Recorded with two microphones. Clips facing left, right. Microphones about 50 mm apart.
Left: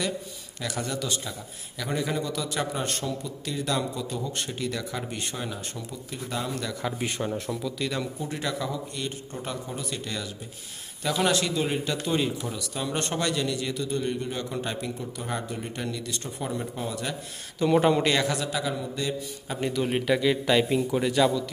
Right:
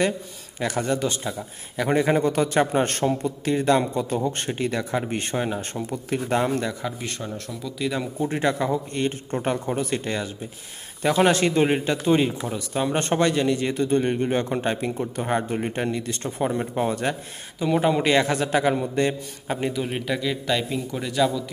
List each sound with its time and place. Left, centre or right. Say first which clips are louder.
0.6 s a man's voice: right 7 dB; right
5.9 s speech: right 10 dB; right
7.0 s speech: left 2 dB; centre
7.8 s speech: right 6 dB; centre
8.2 s a man's voice: right 7 dB; right
17.6 s a man's voice: even; centre
18.2 s a man's voice: right 6 dB; right
19.8 s a man's voice: left 2 dB; centre